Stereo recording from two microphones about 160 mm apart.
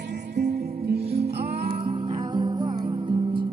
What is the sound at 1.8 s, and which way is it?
Music, 25° right (ahead or behind).